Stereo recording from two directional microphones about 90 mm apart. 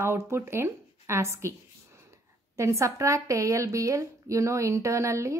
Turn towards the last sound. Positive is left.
turn(degrees=-35)  # may be behind; listen again after turning